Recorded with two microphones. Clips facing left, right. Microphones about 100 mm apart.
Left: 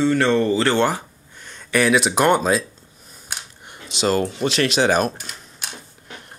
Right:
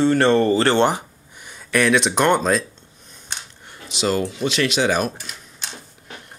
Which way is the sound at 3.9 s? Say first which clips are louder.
Left 1 dB; 40° left (ahead or behind).